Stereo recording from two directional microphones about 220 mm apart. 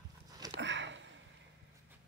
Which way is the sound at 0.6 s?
55° right (ahead or behind).